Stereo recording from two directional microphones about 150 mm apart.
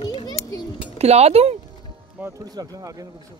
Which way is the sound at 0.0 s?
30° left (ahead or behind).